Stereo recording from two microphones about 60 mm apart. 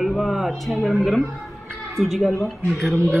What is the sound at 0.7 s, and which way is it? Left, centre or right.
Speech, centre.